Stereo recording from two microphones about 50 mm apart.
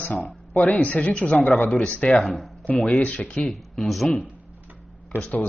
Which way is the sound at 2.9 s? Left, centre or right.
Left.